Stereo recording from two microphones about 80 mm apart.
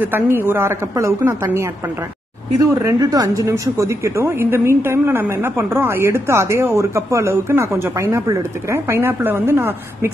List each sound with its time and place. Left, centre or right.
0.0 s a woman's voice: right
3.0 s a woman's voice: right